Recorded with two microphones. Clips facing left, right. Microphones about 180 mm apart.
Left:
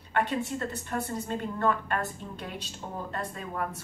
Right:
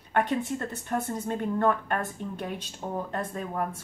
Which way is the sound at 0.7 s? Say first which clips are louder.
Right 2 dB; 50° right (ahead or behind).